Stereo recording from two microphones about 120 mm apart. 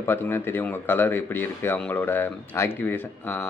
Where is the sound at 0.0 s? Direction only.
20° left (ahead or behind).